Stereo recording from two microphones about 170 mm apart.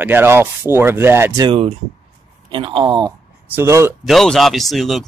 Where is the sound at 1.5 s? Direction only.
35° right (ahead or behind).